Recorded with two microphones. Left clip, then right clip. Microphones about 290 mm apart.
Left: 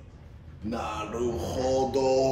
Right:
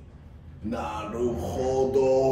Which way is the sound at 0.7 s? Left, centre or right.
Centre.